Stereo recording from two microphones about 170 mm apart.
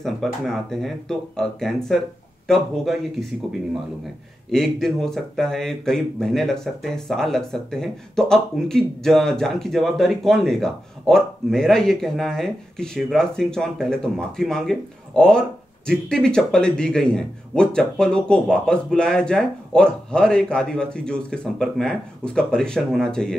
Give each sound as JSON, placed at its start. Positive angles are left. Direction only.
{"t": 0.0, "sound": "speech", "side_deg": 0}
{"t": 4.5, "sound": "speech", "side_deg": 5}